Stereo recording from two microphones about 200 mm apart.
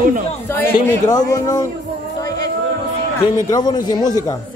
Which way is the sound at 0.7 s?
20° left (ahead or behind).